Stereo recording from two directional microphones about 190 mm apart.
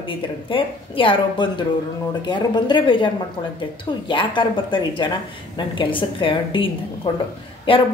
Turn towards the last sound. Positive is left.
turn(degrees=30)  # may be behind; listen again after turning